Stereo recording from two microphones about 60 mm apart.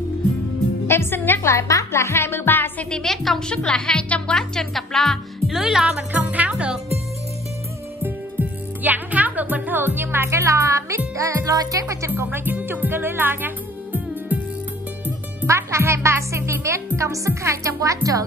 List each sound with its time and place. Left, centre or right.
0.8 s speech: left
1.5 s a woman's voice: left
1.9 s speech: left
2.9 s speech: centre
4.6 s speech: centre
5.5 s speech: centre
5.9 s speech: right
8.0 s speech: right
10.3 s speech: right
12.3 s speech: right
14.3 s music: right
15.4 s speech: right